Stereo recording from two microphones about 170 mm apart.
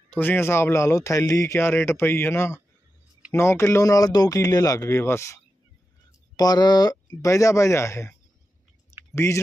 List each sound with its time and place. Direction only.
0.1 s speech: 10° left (ahead or behind)